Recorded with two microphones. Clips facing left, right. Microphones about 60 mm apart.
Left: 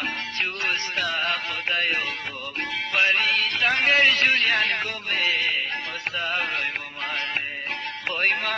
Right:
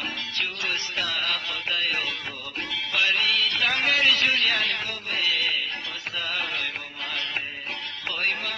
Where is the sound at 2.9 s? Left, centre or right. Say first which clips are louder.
Left 2 dB; left.